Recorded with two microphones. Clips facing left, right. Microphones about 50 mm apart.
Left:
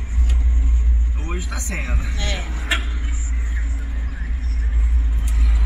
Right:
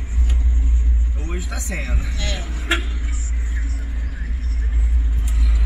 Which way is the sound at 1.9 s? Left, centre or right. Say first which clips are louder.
Left 1 dB; centre.